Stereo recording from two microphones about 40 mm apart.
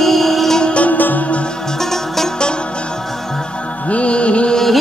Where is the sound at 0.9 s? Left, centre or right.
Left.